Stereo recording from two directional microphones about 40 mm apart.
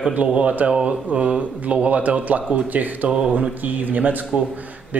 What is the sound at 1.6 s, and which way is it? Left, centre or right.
A man's voice, right.